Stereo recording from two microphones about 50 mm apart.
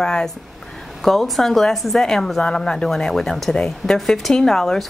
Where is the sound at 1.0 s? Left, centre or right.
Centre.